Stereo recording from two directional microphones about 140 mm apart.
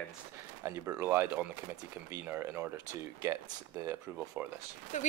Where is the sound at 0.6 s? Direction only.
20° right (ahead or behind).